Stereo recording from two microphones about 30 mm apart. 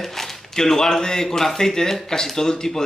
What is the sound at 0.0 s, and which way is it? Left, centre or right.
A man's voice, centre.